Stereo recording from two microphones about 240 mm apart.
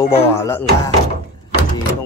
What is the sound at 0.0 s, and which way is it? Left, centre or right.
Speech, centre.